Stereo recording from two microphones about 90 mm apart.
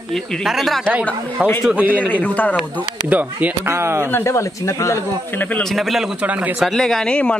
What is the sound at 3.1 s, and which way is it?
Speech, 15° right (ahead or behind).